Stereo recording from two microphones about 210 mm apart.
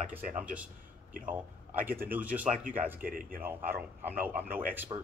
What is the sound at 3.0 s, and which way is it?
Speech, 40° right (ahead or behind).